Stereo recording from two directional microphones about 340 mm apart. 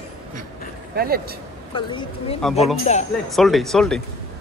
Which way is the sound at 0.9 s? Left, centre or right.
Right.